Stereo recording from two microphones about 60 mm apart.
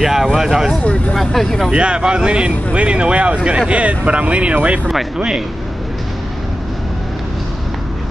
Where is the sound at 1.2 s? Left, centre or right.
Centre.